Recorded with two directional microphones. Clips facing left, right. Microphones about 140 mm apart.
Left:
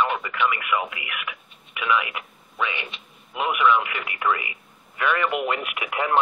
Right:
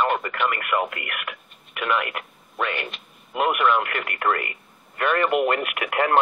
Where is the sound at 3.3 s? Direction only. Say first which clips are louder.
Even; 55° right (ahead or behind).